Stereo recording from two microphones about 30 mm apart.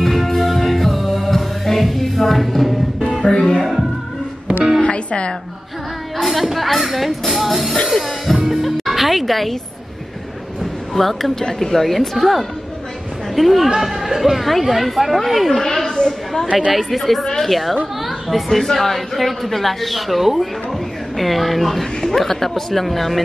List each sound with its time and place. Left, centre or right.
0.0 s music: centre
3.2 s music: centre
3.5 s music: centre
4.8 s music: left
6.2 s speech: centre
7.9 s music: centre
8.5 s speech: centre
10.6 s speech: centre
14.4 s speech: centre
15.6 s a woman's voice: centre